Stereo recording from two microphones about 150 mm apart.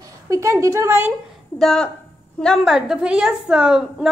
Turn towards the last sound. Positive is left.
turn(degrees=-5)  # may be behind; listen again after turning